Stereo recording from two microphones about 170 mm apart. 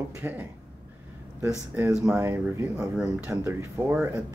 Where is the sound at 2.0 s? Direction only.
15° right (ahead or behind).